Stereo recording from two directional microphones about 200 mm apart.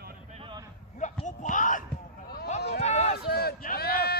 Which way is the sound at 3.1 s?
50° left (ahead or behind).